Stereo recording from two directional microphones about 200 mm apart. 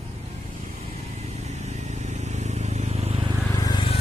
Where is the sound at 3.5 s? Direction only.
20° left (ahead or behind).